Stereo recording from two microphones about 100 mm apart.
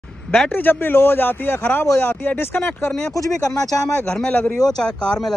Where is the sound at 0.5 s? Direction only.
20° left (ahead or behind).